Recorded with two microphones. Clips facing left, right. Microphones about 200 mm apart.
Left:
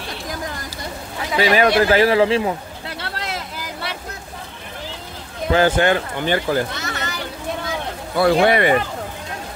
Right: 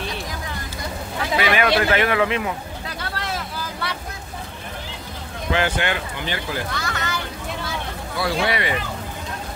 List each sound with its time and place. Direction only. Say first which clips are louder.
1.4 s speech: left 5 dB; 35° left (ahead or behind)
3.0 s vehicle: even; 20° left (ahead or behind)
5.5 s speech: left 7 dB; 40° left (ahead or behind)
6.7 s children playing: even; 20° left (ahead or behind)
8.2 s speech: left 8 dB; 55° left (ahead or behind)